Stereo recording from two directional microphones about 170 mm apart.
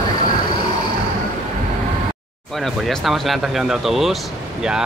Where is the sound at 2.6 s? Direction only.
Centre (ahead or behind).